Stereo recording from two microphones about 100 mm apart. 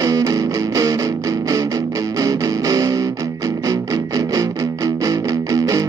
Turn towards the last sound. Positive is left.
turn(degrees=-35)  # may be behind; listen again after turning